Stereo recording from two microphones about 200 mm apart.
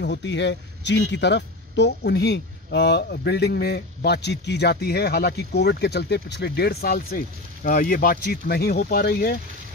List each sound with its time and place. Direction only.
0.0 s speech: 60° left (ahead or behind)